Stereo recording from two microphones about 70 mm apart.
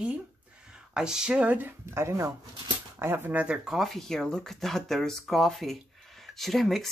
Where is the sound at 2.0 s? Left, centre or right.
Right.